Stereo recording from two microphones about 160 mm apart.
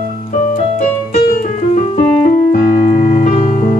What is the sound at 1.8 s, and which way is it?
Keyboard, 50° left (ahead or behind).